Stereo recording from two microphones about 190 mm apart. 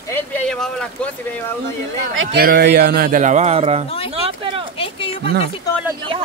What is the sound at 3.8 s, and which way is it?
Speech, 30° left (ahead or behind).